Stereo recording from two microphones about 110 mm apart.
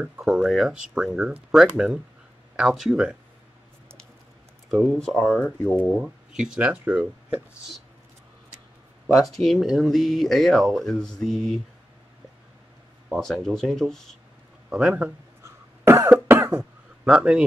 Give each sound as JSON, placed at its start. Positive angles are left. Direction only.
{"t": 0.0, "sound": "speech", "side_deg": -5}
{"t": 4.6, "sound": "speech", "side_deg": 0}
{"t": 5.8, "sound": "speech", "side_deg": -15}
{"t": 9.0, "sound": "speech", "side_deg": 0}
{"t": 13.2, "sound": "speech", "side_deg": 5}
{"t": 15.4, "sound": "cough", "side_deg": -25}
{"t": 16.4, "sound": "a sound", "side_deg": -10}